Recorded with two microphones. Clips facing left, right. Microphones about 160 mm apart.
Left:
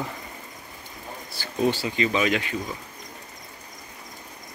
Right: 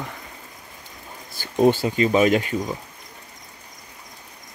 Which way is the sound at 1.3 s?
45° right (ahead or behind).